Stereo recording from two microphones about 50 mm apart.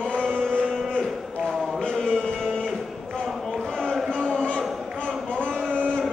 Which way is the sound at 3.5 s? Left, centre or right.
Centre.